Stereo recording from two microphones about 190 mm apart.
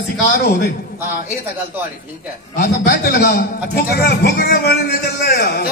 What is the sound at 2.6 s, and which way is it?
A man's voice, 55° left (ahead or behind).